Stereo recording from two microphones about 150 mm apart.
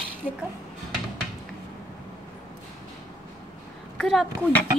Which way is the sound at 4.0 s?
Centre (ahead or behind).